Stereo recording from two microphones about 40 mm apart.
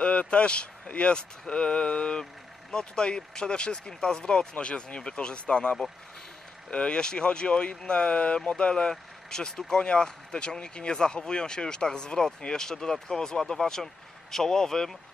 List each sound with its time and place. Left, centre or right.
0.0 s speech: left; by 15.0 s centre